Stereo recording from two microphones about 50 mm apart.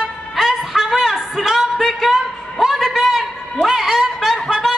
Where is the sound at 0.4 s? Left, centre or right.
Centre.